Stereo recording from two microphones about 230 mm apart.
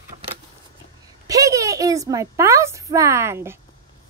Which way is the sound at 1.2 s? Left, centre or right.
Centre.